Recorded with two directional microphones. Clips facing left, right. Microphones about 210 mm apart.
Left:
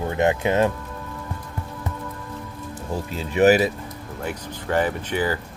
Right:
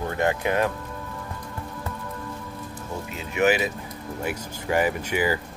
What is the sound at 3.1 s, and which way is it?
Speech, 35° left (ahead or behind).